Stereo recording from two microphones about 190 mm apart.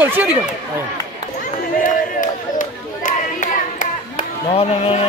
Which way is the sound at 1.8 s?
45° left (ahead or behind).